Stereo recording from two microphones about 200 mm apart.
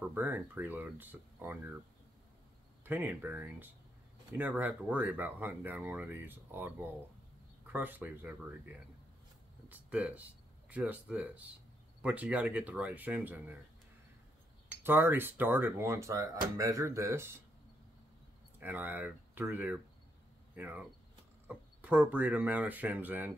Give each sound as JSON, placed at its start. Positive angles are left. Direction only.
{"t": 0.1, "sound": "speech", "side_deg": -10}
{"t": 2.8, "sound": "speech", "side_deg": -10}
{"t": 9.7, "sound": "speech", "side_deg": -5}
{"t": 14.8, "sound": "speech", "side_deg": -10}
{"t": 18.6, "sound": "speech", "side_deg": -10}